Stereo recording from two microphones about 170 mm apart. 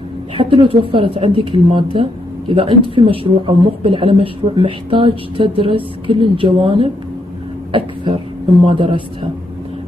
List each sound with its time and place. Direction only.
0.4 s speech: 30° right (ahead or behind)